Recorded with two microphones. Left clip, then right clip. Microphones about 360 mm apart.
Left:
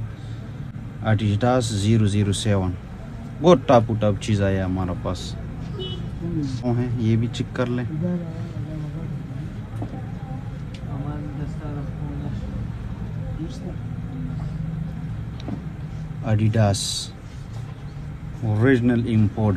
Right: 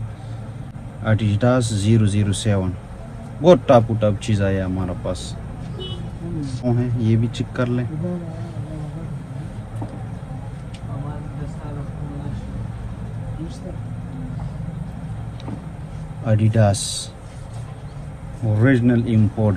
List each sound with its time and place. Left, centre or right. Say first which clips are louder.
1.0 s a man's voice: right 2 dB; centre
6.6 s a man's voice: right 5 dB; centre
16.3 s a man's voice: right 3 dB; centre
18.6 s a man's voice: right 1 dB; centre